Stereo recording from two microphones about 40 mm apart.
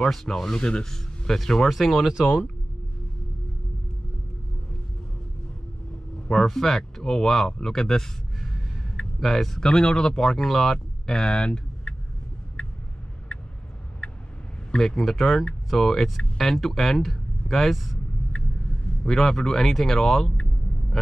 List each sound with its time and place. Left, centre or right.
0.1 s speech: centre
0.8 s speech: centre
6.3 s speech: centre
9.2 s speech: centre
9.6 s speech: centre
11.1 s speech: centre
12.6 s vehicle: left
14.0 s vehicle: left
14.7 s speech: centre
19.0 s speech: centre